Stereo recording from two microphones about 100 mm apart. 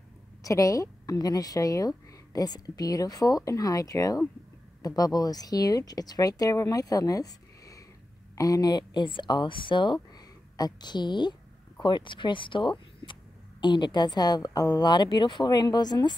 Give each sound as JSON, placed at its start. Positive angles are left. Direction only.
{"t": 0.4, "sound": "speech", "side_deg": 35}